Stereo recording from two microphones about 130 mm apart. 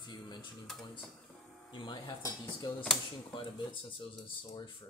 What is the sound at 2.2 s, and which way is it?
Speech, 25° left (ahead or behind).